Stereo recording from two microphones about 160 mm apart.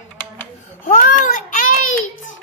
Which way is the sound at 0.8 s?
55° left (ahead or behind).